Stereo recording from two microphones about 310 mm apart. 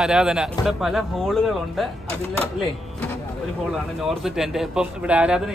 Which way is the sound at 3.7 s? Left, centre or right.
Centre.